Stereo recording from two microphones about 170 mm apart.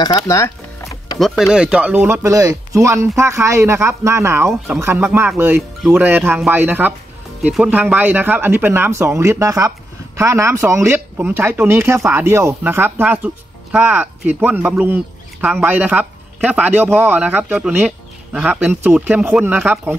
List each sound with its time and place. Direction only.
0.0 s speech: 20° left (ahead or behind)
1.2 s speech: centre (ahead or behind)